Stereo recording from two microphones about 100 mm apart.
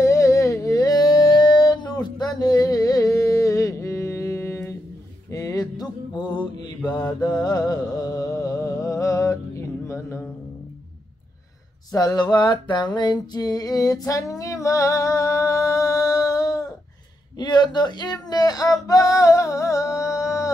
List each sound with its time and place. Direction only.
0.0 s a sound: 30° left (ahead or behind)
5.3 s music: 35° left (ahead or behind)
6.9 s mantra: 45° left (ahead or behind)
7.9 s music: 40° left (ahead or behind)
11.9 s music: 40° left (ahead or behind)
17.4 s speech: 45° left (ahead or behind)
19.1 s singing: 30° left (ahead or behind)